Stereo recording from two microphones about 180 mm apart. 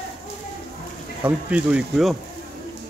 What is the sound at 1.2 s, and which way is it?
Speech, 10° right (ahead or behind).